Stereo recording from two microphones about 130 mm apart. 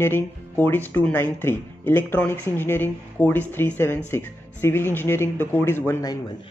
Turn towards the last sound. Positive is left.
turn(degrees=20)  # may be behind; listen again after turning